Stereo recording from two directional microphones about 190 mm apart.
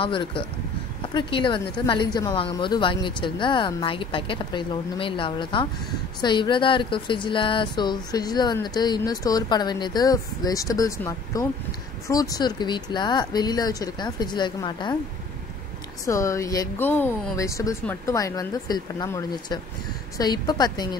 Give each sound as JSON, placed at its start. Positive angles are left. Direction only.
{"t": 0.0, "sound": "speech", "side_deg": 25}
{"t": 16.1, "sound": "speech", "side_deg": 15}